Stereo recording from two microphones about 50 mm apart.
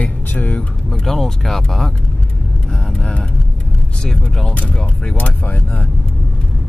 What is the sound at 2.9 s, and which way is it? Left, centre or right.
Speech, centre.